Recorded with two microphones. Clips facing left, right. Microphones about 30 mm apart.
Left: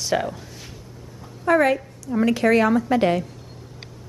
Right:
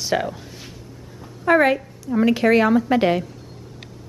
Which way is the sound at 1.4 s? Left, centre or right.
Right.